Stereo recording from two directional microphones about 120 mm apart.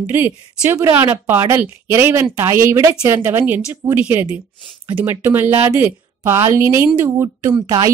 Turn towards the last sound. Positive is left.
turn(degrees=-35)  # may be behind; listen again after turning